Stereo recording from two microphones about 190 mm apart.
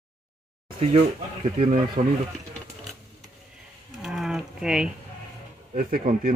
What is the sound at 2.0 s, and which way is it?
Speech, 45° right (ahead or behind).